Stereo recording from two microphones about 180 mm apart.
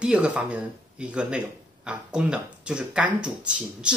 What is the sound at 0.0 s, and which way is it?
Speech, 5° right (ahead or behind).